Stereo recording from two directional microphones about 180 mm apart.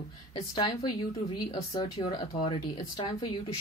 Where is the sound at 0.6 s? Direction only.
30° left (ahead or behind).